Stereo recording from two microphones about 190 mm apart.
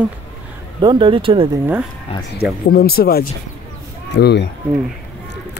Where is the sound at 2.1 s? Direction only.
30° left (ahead or behind).